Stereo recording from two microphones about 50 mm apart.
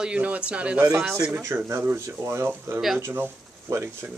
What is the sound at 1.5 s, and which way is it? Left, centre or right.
Speech, right.